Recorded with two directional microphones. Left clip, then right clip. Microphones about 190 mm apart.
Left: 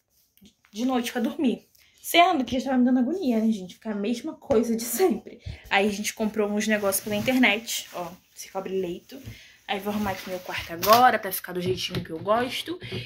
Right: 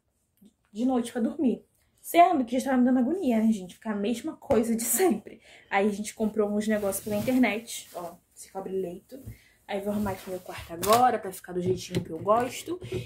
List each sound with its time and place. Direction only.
0.7 s a woman's voice: 15° right (ahead or behind)
2.0 s a woman's voice: 15° right (ahead or behind); by 7.8 s centre (ahead or behind)
9.7 s a woman's voice: centre (ahead or behind)